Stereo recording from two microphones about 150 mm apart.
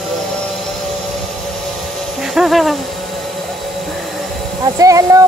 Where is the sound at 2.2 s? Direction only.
Centre (ahead or behind).